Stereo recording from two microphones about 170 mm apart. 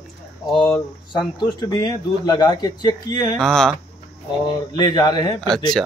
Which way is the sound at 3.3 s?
5° left (ahead or behind).